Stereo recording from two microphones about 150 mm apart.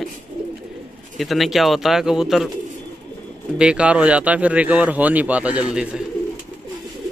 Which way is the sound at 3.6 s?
5° right (ahead or behind).